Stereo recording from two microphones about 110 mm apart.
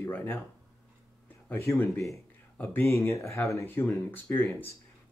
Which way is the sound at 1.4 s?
20° left (ahead or behind).